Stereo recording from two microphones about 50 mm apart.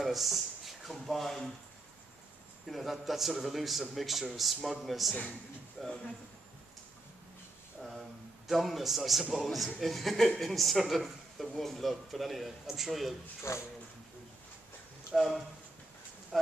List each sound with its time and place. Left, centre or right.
0.0 s speech: centre
2.6 s speech: centre
8.5 s speech: centre
13.5 s speech: left
15.1 s speech: centre